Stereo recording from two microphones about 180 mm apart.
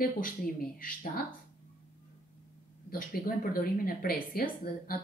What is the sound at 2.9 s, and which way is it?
Speech, 55° left (ahead or behind).